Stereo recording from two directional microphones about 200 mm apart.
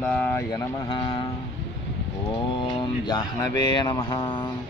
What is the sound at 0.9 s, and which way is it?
Speech, 25° left (ahead or behind).